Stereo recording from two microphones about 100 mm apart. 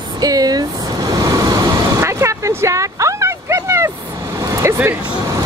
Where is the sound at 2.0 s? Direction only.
30° right (ahead or behind).